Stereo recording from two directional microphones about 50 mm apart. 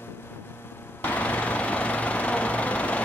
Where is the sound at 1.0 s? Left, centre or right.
Left.